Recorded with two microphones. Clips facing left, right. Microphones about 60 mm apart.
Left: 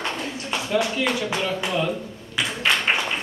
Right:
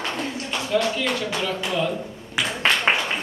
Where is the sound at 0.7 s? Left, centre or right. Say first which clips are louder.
Even; centre.